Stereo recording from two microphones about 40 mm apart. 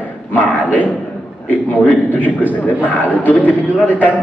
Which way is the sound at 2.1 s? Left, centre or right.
Left.